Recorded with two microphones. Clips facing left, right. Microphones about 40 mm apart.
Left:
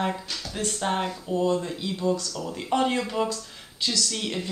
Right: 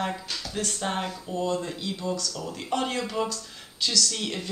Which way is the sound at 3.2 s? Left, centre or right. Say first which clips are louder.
Left 2 dB; centre.